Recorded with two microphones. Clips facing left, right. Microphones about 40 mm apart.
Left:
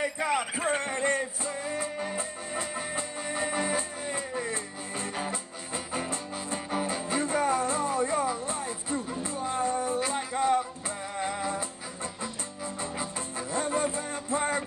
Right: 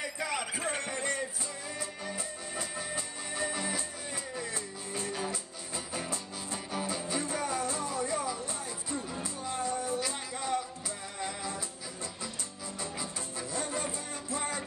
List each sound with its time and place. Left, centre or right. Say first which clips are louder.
0.0 s music: left 6 dB; left
12.9 s music: left 5 dB; left